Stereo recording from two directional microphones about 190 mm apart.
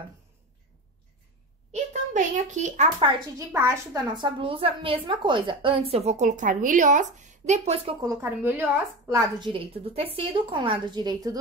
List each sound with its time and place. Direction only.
1.7 s speech: 40° right (ahead or behind)
3.5 s a woman's voice: 15° right (ahead or behind)
8.0 s a woman's voice: 15° right (ahead or behind)
9.5 s a woman's voice: 30° right (ahead or behind)